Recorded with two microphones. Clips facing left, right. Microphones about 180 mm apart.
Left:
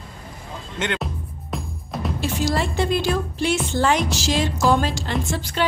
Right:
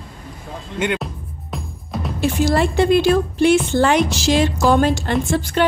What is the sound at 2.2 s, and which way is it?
A woman's voice, 60° right (ahead or behind).